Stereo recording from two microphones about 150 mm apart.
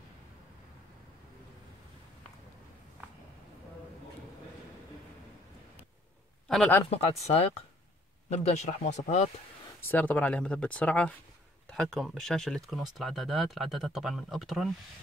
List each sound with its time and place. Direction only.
6.5 s speech: 5° left (ahead or behind)
6.9 s speech: 40° left (ahead or behind)
9.8 s speech: 15° left (ahead or behind)